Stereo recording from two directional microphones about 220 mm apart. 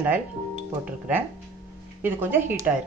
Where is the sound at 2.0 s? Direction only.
10° right (ahead or behind).